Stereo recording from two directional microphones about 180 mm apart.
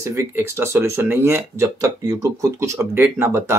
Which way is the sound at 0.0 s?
15° right (ahead or behind).